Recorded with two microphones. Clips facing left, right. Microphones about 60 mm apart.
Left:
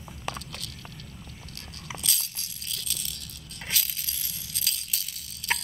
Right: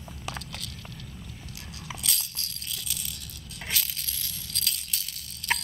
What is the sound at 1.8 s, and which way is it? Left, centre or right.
Rattle, centre.